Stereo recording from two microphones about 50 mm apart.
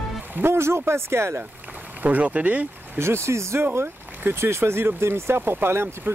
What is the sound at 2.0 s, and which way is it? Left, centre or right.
Speech, right.